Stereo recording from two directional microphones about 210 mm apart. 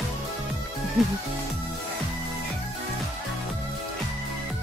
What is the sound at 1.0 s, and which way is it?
Speech, centre (ahead or behind).